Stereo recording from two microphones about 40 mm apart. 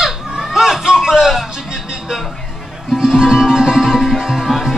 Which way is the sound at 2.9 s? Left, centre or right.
Centre.